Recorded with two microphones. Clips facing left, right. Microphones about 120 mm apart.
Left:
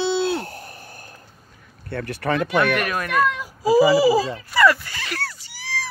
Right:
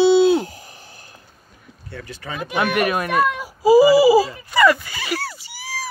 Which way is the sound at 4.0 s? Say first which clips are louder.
Right 4 dB; 5° right (ahead or behind).